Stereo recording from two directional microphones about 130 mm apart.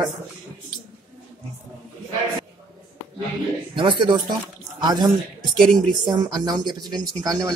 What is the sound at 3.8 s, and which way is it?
Speech, 40° right (ahead or behind).